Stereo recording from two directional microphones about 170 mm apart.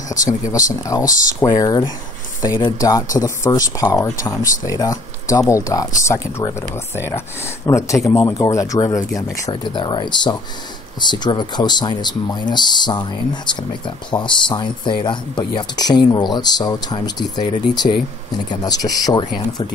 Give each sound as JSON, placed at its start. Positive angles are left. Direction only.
{"t": 0.1, "sound": "speech", "side_deg": 20}
{"t": 18.5, "sound": "speech", "side_deg": 20}